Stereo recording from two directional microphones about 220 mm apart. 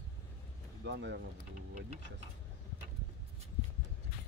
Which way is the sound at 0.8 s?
55° right (ahead or behind).